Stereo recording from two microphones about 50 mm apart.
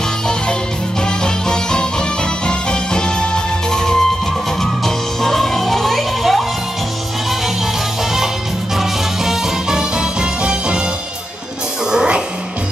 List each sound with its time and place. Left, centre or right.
1.0 s music: centre
8.7 s music: centre